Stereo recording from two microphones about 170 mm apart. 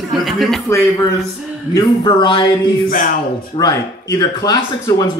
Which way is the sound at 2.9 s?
55° left (ahead or behind).